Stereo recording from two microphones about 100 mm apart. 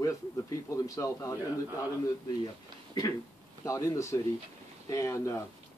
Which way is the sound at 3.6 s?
35° left (ahead or behind).